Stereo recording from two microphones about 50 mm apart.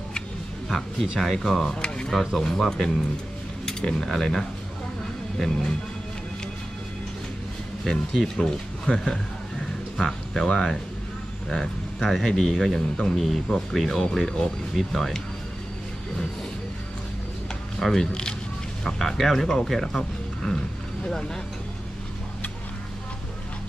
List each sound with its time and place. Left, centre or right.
0.7 s speech: centre
2.1 s speech: centre
8.4 s speech: centre
8.9 s speech: centre
17.7 s speech: centre